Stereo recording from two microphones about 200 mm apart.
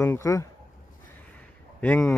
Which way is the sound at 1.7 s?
5° left (ahead or behind).